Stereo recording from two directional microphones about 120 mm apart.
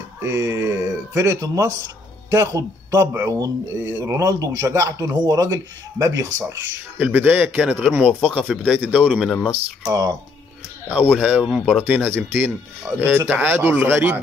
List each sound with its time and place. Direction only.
0.2 s speech: 20° right (ahead or behind)
7.0 s speech: 15° right (ahead or behind)
9.8 s speech: 30° right (ahead or behind)
10.9 s speech: 10° right (ahead or behind)
11.8 s speech: 15° right (ahead or behind)